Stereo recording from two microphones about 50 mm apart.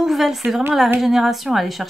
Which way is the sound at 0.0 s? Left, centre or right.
Centre.